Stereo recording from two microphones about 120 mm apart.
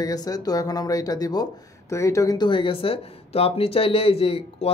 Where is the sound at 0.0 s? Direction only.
30° left (ahead or behind).